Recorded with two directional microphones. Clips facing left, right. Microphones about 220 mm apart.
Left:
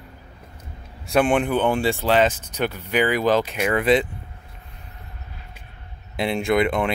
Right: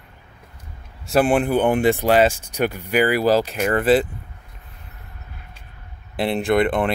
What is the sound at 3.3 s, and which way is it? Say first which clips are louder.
Speech: right 2 dB; 35° right (ahead or behind).